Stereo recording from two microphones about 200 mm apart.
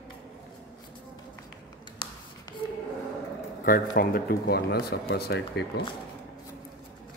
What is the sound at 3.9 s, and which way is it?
Speech, 50° left (ahead or behind).